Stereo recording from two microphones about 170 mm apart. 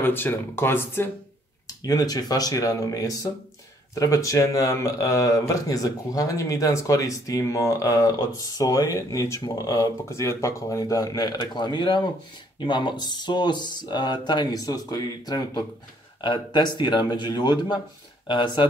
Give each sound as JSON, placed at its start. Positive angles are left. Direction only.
{"t": 0.0, "sound": "speech", "side_deg": 10}